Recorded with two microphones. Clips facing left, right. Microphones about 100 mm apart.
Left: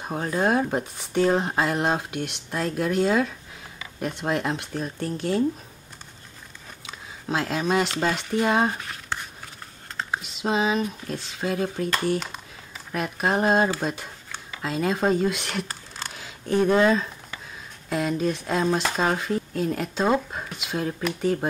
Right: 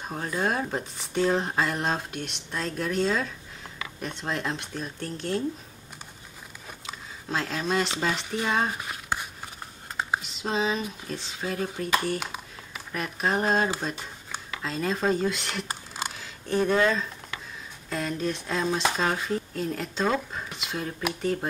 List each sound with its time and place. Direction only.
0.0 s speech: 10° left (ahead or behind)
7.2 s speech: 5° left (ahead or behind)
8.8 s a sound: 10° right (ahead or behind)
10.2 s speech: 5° left (ahead or behind)